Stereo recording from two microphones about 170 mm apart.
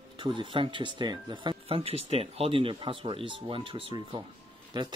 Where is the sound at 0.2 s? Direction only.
30° right (ahead or behind).